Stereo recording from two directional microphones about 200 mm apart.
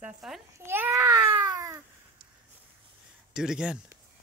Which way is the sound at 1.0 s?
20° right (ahead or behind).